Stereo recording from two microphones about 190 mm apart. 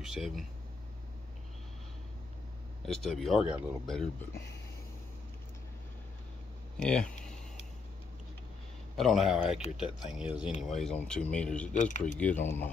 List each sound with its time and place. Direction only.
0.0 s speech: centre (ahead or behind)
2.8 s speech: centre (ahead or behind)
6.8 s a sound: 5° left (ahead or behind)
8.9 s speech: centre (ahead or behind)
11.7 s speech: 40° left (ahead or behind)
12.2 s speech: 10° left (ahead or behind)